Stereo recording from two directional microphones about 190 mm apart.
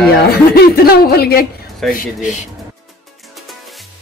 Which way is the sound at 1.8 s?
Centre (ahead or behind).